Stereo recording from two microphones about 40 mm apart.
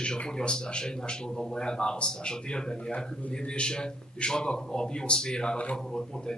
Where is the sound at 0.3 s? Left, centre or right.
Centre.